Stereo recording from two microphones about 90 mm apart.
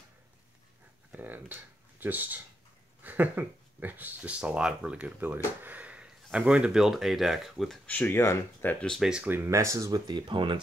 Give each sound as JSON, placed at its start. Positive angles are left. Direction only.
{"t": 1.1, "sound": "speech", "side_deg": -20}
{"t": 7.8, "sound": "speech", "side_deg": 15}
{"t": 8.1, "sound": "speech", "side_deg": 30}
{"t": 9.0, "sound": "speech", "side_deg": -10}
{"t": 9.3, "sound": "speech", "side_deg": -30}